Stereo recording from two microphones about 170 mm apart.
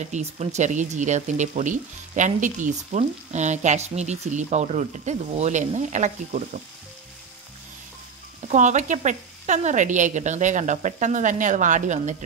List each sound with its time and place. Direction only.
0.0 s speech: 40° right (ahead or behind)
8.5 s speech: 45° right (ahead or behind)